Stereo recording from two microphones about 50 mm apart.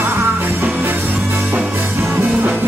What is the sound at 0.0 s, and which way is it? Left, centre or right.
Music, right.